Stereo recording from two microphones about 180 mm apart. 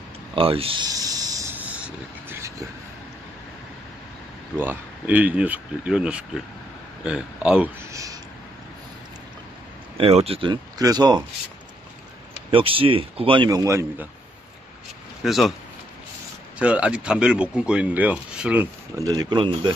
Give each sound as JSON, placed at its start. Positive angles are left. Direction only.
{"t": 0.4, "sound": "a sound", "side_deg": -30}
{"t": 4.6, "sound": "speech", "side_deg": -10}
{"t": 7.9, "sound": "a sound", "side_deg": -20}
{"t": 9.9, "sound": "speech", "side_deg": -35}
{"t": 12.4, "sound": "speech", "side_deg": -30}
{"t": 15.2, "sound": "speech", "side_deg": 0}
{"t": 16.5, "sound": "speech", "side_deg": -5}
{"t": 18.9, "sound": "speech", "side_deg": -20}